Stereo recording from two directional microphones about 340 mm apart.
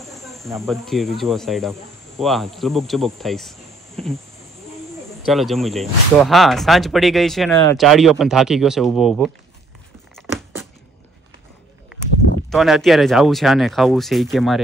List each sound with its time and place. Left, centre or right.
0.1 s speech: centre
5.2 s speech: centre
10.1 s a sound: centre
12.4 s speech: centre